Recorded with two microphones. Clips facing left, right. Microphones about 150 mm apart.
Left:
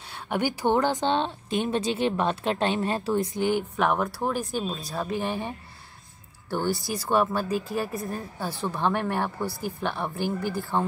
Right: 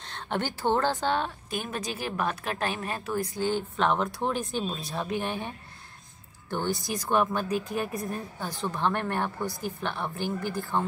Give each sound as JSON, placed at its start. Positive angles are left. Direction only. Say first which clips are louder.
{"t": 0.0, "sound": "a woman's voice", "louder": "left 4 dB", "side_deg": 10}
{"t": 6.5, "sound": "speech", "louder": "left 2 dB", "side_deg": 5}